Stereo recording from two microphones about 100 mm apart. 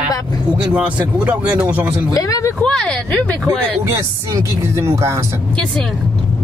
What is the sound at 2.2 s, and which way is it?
Speech, 35° left (ahead or behind).